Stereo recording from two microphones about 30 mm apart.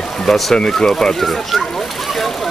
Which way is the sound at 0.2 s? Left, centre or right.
Centre.